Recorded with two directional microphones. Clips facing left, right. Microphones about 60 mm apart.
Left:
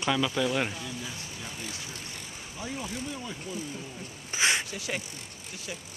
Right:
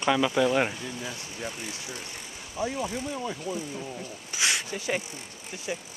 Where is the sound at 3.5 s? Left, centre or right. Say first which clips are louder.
Right 4 dB; centre.